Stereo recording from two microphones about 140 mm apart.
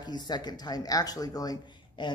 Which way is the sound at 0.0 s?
30° left (ahead or behind).